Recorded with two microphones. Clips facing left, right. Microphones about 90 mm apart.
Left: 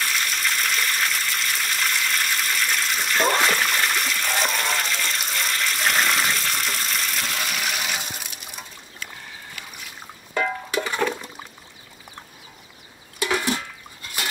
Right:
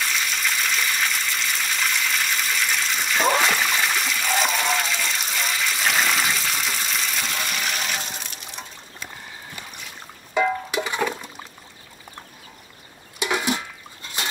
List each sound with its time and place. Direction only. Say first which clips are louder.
0.0 s water: even; centre (ahead or behind)
10.3 s music: right 3 dB; 10° right (ahead or behind)
11.0 s water: left 2 dB; centre (ahead or behind)
13.2 s a sound: even; 15° right (ahead or behind)
14.0 s water: even; 25° right (ahead or behind)